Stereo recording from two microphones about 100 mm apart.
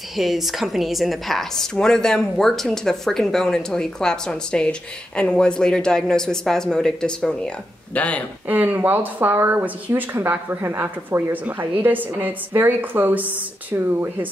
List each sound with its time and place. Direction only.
0.1 s a woman's voice: centre (ahead or behind); by 8.2 s 15° left (ahead or behind)
8.5 s speech: 15° right (ahead or behind)